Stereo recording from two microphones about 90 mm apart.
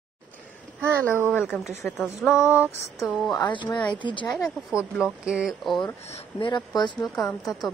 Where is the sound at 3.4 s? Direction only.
60° left (ahead or behind).